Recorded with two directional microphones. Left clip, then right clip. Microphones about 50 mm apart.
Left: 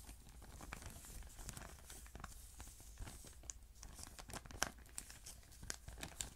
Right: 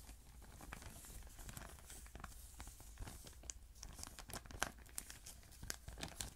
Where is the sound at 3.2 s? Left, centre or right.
Centre.